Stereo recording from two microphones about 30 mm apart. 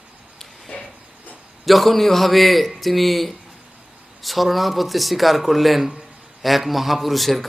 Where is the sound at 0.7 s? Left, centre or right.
Left.